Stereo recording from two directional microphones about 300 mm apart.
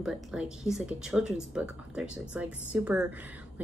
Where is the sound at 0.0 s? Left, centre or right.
Centre.